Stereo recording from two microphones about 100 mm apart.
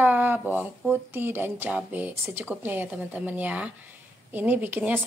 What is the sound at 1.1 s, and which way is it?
Speech, 20° right (ahead or behind).